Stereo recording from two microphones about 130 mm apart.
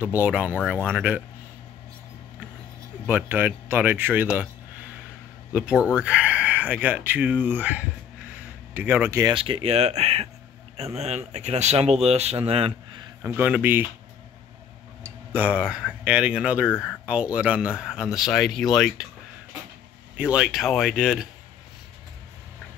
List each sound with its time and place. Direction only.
0.0 s speech: 10° right (ahead or behind)
3.1 s speech: 15° right (ahead or behind)
5.5 s speech: 10° right (ahead or behind)
5.8 s speech: 20° left (ahead or behind)
6.0 s a sound: 10° right (ahead or behind)
7.1 s speech: 10° right (ahead or behind)
8.4 s a sound: 15° right (ahead or behind)
9.2 s speech: 40° right (ahead or behind)
13.2 s speech: 15° right (ahead or behind)
15.3 s speech: 10° right (ahead or behind)
16.6 s speech: 15° left (ahead or behind)
17.0 s speech: 10° right (ahead or behind)
20.2 s speech: 5° right (ahead or behind)